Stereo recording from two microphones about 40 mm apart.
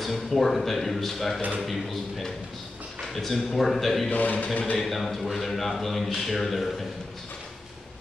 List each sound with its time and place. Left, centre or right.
0.0 s speech: centre
4.1 s a man's voice: left
4.7 s speech: centre